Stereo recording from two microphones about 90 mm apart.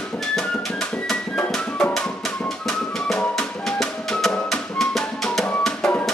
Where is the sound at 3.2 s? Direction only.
5° left (ahead or behind).